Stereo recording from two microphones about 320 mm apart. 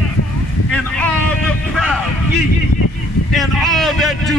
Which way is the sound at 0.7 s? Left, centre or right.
Centre.